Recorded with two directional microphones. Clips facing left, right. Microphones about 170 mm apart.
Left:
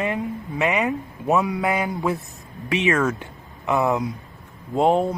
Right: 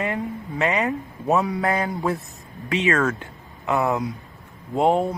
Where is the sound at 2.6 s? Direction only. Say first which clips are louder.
Left 1 dB; 20° left (ahead or behind).